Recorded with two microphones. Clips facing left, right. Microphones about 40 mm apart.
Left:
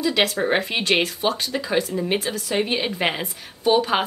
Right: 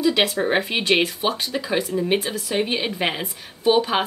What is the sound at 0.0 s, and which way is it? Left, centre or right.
A woman's voice, centre.